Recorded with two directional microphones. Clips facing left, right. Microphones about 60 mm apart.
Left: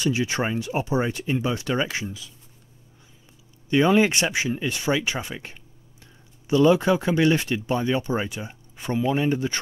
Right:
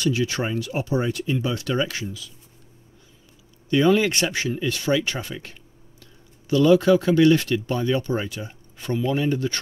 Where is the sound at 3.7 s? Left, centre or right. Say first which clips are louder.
Even; left.